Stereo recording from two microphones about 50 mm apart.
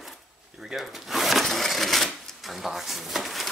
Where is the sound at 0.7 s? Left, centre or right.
Centre.